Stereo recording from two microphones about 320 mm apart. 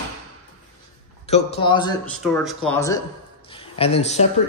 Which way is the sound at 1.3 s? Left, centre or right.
Centre.